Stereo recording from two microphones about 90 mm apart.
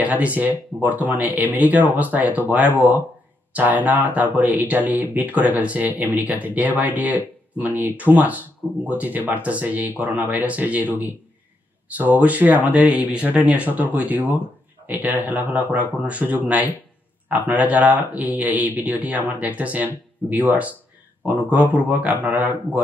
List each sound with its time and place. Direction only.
0.0 s speech: 15° right (ahead or behind)